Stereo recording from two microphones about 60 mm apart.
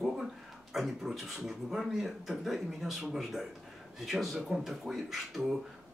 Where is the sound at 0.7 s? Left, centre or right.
Centre.